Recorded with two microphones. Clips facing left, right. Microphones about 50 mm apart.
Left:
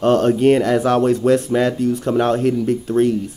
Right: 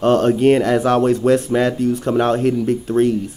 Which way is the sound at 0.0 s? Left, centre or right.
Centre.